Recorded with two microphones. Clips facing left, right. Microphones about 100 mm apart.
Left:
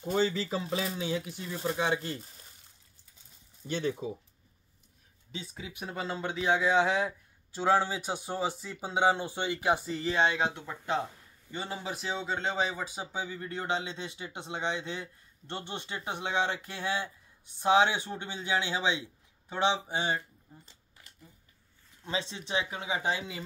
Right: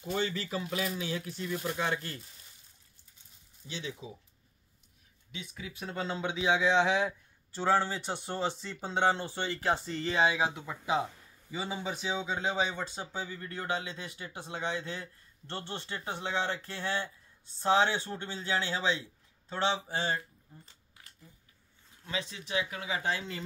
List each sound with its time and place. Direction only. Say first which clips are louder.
0.0 s speech: left 4 dB; 30° left (ahead or behind)
1.5 s speech: left 2 dB; 30° left (ahead or behind)
1.8 s speech: left 6 dB; 15° left (ahead or behind)
3.6 s speech: left 9 dB; 50° left (ahead or behind)
5.3 s speech: left 2 dB; 30° left (ahead or behind)
5.7 s speech: even; 15° left (ahead or behind)
7.5 s speech: left 2 dB; 15° left (ahead or behind)
10.2 s speech: right 2 dB; 5° right (ahead or behind); by 20.2 s 15° left (ahead or behind)
22.0 s speech: left 3 dB; 30° left (ahead or behind)